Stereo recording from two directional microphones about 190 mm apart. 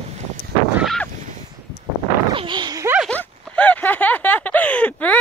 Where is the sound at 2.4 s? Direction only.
25° right (ahead or behind).